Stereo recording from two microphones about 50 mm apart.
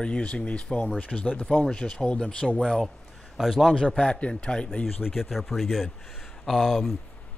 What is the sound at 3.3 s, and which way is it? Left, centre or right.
Speech, centre.